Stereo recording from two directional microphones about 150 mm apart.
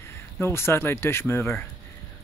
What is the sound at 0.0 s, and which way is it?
Speech, 15° left (ahead or behind).